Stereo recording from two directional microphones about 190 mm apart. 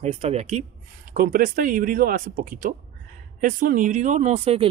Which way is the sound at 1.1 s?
50° right (ahead or behind).